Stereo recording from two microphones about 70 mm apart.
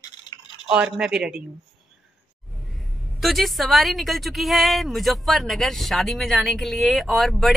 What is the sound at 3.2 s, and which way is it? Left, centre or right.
Speech, centre.